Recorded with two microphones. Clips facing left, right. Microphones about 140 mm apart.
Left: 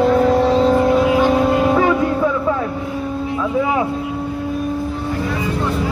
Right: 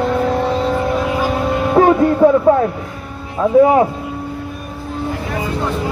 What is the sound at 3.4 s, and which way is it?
Speech, 40° right (ahead or behind).